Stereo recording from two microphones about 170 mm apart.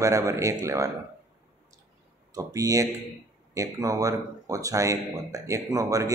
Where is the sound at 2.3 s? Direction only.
20° right (ahead or behind).